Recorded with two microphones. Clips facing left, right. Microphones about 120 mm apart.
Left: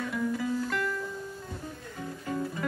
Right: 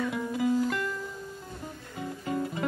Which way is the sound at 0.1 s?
20° right (ahead or behind).